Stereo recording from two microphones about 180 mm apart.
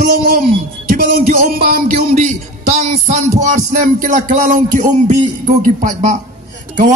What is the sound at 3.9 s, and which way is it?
Music, 50° right (ahead or behind).